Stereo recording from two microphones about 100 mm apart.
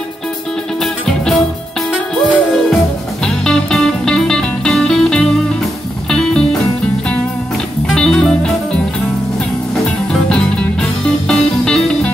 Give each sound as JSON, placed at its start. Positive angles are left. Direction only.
{"t": 1.9, "sound": "music", "side_deg": 0}
{"t": 10.1, "sound": "music", "side_deg": 5}